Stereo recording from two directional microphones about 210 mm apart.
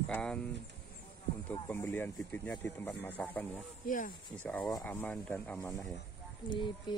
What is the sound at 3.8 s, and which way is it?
Speech, 40° left (ahead or behind).